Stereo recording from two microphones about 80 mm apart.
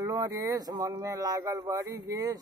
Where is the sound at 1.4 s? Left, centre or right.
Right.